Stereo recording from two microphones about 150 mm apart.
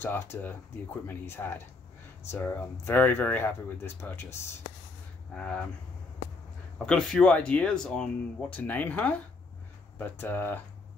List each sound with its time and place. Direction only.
0.0 s speech: 15° left (ahead or behind)
5.3 s speech: 5° left (ahead or behind)
6.9 s speech: 5° left (ahead or behind)